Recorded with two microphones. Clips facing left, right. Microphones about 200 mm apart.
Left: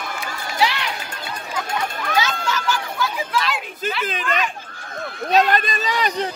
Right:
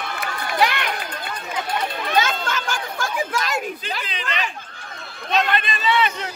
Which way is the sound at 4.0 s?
45° left (ahead or behind).